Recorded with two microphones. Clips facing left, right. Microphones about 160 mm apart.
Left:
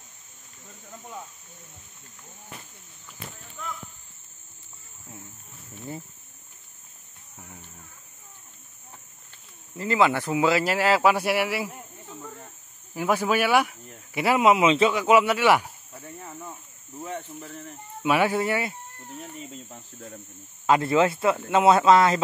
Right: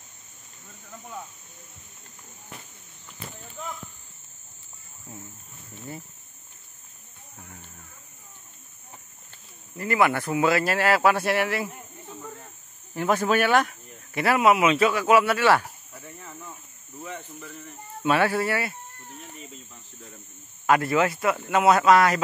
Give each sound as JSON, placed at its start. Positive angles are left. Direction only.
{"t": 3.6, "sound": "speech", "side_deg": -25}
{"t": 9.8, "sound": "speech", "side_deg": 20}
{"t": 12.9, "sound": "speech", "side_deg": 10}
{"t": 18.0, "sound": "speech", "side_deg": 15}
{"t": 20.6, "sound": "speech", "side_deg": 25}